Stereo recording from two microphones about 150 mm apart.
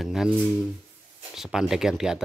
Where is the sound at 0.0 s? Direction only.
5° right (ahead or behind).